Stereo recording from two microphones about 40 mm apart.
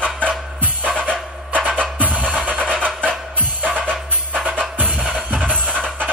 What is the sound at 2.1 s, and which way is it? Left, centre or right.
Music, right.